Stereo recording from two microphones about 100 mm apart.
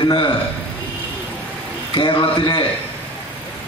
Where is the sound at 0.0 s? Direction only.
55° left (ahead or behind).